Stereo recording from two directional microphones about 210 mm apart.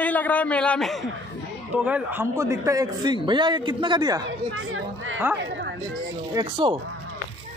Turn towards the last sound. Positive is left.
turn(degrees=-20)  # may be behind; listen again after turning